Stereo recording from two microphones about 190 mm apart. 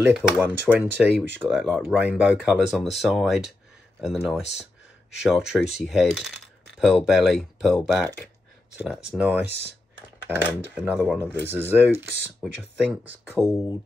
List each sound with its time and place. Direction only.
0.0 s speech: 10° right (ahead or behind)
9.5 s speech: 60° right (ahead or behind)
10.2 s speech: 10° right (ahead or behind)
11.1 s speech: 10° left (ahead or behind)
11.5 s speech: 10° right (ahead or behind)